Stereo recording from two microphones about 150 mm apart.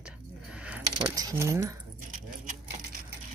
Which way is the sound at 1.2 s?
20° right (ahead or behind).